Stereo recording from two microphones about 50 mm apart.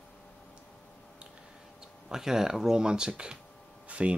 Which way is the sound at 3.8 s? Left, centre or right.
Right.